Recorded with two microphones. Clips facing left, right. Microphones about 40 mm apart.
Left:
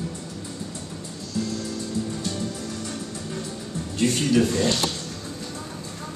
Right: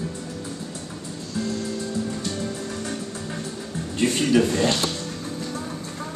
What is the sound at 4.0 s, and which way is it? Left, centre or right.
Speech, centre.